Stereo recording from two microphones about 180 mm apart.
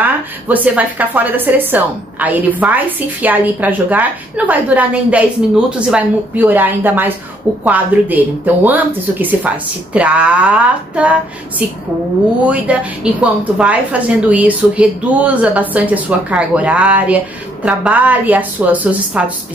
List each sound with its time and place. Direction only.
0.0 s a woman's voice: 10° right (ahead or behind)
12.7 s a woman's voice: 5° right (ahead or behind)